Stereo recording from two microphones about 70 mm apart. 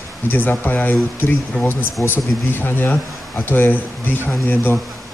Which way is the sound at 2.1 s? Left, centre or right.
Left.